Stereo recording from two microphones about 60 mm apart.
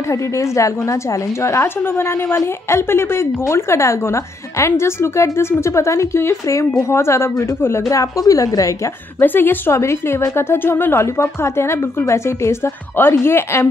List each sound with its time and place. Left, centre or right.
0.1 s a woman's voice: left
1.8 s a woman's voice: left
7.9 s a woman's voice: left
9.2 s speech: left
9.7 s a woman's voice: left